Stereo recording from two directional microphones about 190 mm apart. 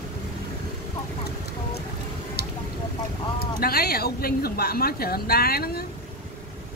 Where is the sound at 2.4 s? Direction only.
55° left (ahead or behind).